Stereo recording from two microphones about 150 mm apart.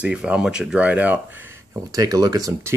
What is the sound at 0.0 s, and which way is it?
Speech, 5° right (ahead or behind).